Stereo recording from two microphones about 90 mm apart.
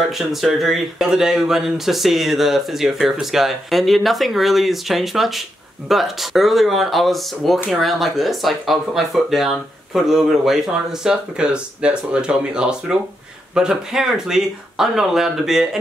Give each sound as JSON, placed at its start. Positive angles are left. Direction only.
{"t": 0.1, "sound": "speech", "side_deg": 0}